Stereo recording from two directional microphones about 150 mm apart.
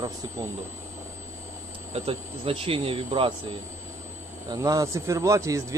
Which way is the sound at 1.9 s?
40° right (ahead or behind).